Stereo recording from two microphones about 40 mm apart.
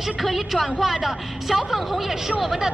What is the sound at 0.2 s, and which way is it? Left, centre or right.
A woman's voice, centre.